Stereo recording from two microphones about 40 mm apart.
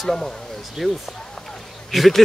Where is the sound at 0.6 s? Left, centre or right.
Centre.